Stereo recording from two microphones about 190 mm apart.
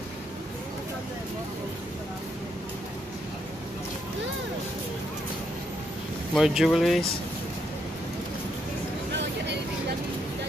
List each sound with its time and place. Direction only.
6.3 s speech: centre (ahead or behind)
9.1 s vehicle: 70° right (ahead or behind)